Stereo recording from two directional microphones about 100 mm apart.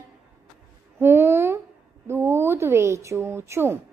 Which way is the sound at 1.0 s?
25° right (ahead or behind).